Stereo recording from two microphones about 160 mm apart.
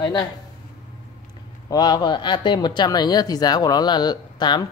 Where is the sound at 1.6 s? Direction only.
25° left (ahead or behind).